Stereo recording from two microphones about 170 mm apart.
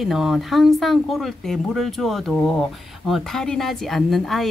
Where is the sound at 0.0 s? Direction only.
Centre (ahead or behind).